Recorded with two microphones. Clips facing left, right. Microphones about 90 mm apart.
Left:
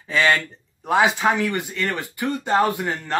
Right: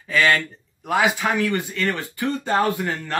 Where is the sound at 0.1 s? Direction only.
25° left (ahead or behind).